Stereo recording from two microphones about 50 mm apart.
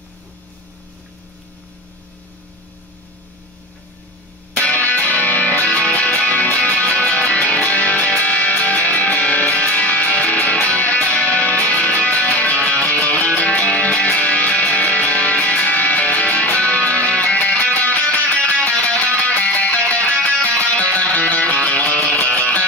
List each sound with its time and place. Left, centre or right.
4.6 s music: left